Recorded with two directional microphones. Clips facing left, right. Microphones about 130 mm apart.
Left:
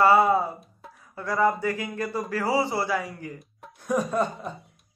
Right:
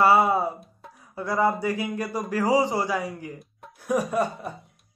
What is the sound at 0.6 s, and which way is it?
Music, centre (ahead or behind).